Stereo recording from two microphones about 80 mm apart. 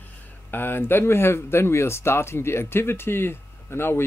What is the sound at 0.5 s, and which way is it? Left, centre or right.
Speech, left.